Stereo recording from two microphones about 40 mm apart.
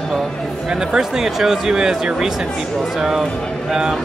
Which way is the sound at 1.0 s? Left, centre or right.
Centre.